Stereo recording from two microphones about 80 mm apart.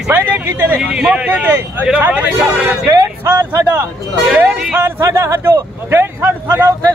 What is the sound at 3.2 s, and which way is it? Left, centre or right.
Speech, right.